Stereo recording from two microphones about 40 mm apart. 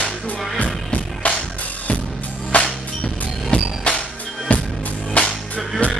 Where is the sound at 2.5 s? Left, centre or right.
Left.